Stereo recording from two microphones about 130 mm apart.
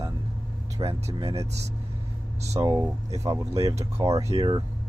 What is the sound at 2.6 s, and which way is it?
Speech, 25° right (ahead or behind).